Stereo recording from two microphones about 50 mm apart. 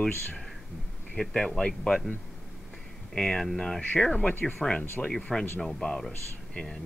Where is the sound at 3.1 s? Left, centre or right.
Centre.